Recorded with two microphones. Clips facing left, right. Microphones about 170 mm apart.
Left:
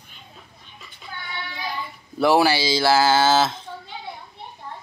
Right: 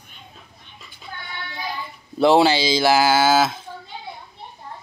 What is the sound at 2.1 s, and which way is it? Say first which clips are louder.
Speech: right 3 dB; 20° right (ahead or behind).